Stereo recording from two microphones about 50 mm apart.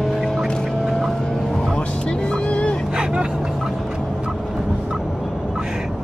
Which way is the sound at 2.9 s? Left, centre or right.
Centre.